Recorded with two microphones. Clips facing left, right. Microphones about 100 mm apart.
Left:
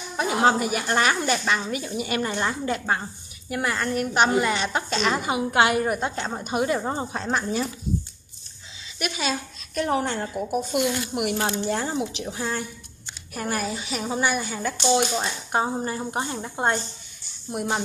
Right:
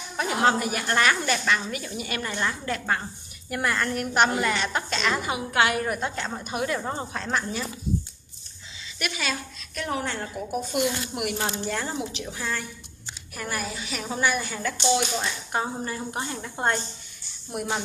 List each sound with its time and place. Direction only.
0.2 s a woman's voice: 10° left (ahead or behind)
3.4 s a woman's voice: 5° left (ahead or behind)
4.2 s a woman's voice: 15° left (ahead or behind)
8.9 s a woman's voice: 20° left (ahead or behind)
9.8 s a woman's voice: 30° left (ahead or behind)
11.2 s a woman's voice: 30° left (ahead or behind)
13.3 s speech: 40° left (ahead or behind)
13.7 s a woman's voice: 25° left (ahead or behind)
14.1 s a woman's voice: 10° left (ahead or behind)